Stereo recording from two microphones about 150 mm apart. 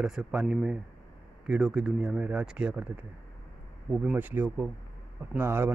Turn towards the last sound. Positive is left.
turn(degrees=-15)  # may be behind; listen again after turning